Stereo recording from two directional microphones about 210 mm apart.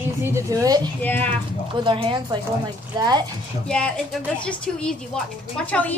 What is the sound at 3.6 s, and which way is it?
A woman's voice, 5° left (ahead or behind).